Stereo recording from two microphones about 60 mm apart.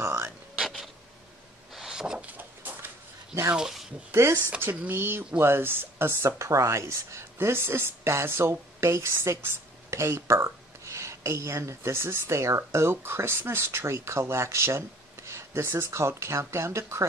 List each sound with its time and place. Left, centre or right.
0.0 s speech: right
0.6 s a sound: centre
2.2 s a sound: right
3.5 s speech: centre
4.1 s speech: right
4.6 s speech: right
6.3 s speech: right
7.3 s speech: right